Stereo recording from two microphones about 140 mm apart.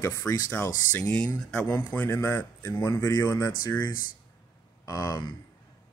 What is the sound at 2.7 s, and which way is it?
Speech, 25° left (ahead or behind).